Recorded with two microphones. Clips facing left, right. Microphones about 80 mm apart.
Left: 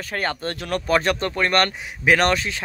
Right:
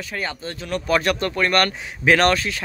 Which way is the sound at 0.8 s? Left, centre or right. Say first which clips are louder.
Even; left.